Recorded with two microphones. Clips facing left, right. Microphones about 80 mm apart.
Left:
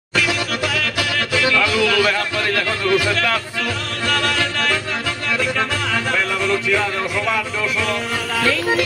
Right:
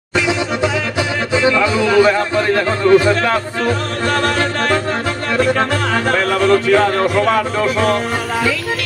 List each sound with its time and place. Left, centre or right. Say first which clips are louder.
1.3 s speech: right 4 dB; right
5.4 s music: right 8 dB; right